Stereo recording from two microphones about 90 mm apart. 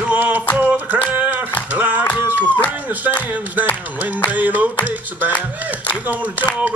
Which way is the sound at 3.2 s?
20° right (ahead or behind).